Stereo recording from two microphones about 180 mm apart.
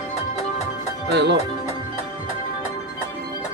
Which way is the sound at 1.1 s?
70° right (ahead or behind).